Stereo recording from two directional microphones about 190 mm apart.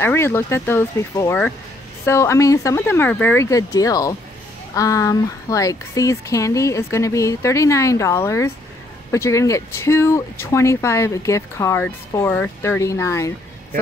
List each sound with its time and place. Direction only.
0.0 s speech: 10° left (ahead or behind)